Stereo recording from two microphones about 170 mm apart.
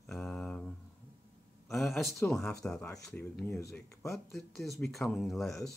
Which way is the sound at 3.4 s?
15° left (ahead or behind).